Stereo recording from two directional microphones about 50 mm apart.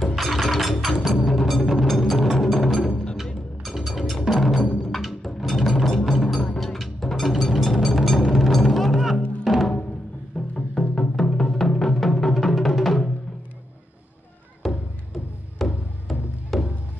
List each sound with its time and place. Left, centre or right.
0.0 s music: centre
4.3 s wood block: centre
4.6 s music: centre
5.0 s music: centre
10.5 s music: centre
14.7 s music: centre